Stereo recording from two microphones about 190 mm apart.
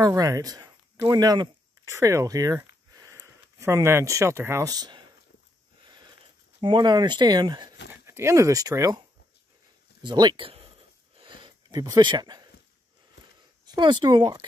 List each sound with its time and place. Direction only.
0.0 s speech: 20° right (ahead or behind)
5.9 s sniff: 25° right (ahead or behind)
6.6 s speech: 25° right (ahead or behind)
10.0 s speech: 25° right (ahead or behind)
11.1 s a sound: 25° right (ahead or behind)
13.7 s speech: 25° right (ahead or behind)